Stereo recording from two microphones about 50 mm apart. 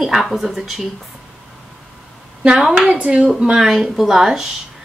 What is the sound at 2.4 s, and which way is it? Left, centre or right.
Speech, centre.